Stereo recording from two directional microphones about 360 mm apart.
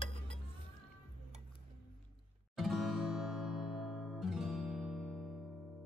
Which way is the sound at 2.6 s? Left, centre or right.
Centre.